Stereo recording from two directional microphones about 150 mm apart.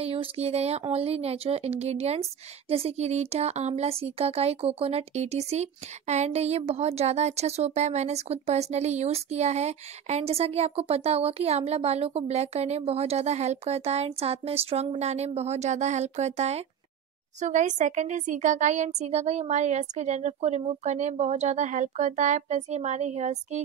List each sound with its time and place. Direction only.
0.0 s speech: 40° right (ahead or behind)